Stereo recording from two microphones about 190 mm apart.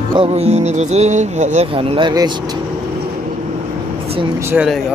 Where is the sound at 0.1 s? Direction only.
30° right (ahead or behind).